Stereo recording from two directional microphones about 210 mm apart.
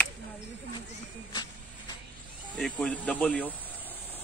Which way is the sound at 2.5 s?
5° left (ahead or behind).